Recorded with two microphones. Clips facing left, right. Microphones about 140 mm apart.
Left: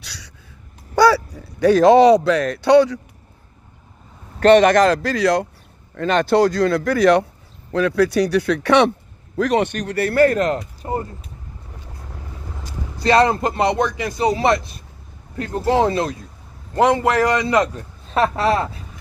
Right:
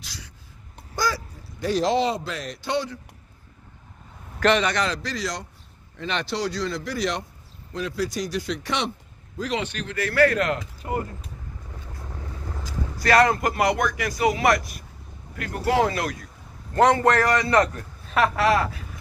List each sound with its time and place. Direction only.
1.1 s a sound: 70° left (ahead or behind)
2.4 s speech: 60° left (ahead or behind)
4.6 s speech: 50° left (ahead or behind)
5.9 s speech: 50° left (ahead or behind); by 11.1 s 30° left (ahead or behind)
13.0 s speech: 25° left (ahead or behind)
16.7 s a man's voice: 15° left (ahead or behind)
18.1 s speech: 30° left (ahead or behind)